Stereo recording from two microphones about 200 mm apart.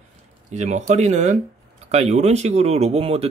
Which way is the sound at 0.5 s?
35° right (ahead or behind).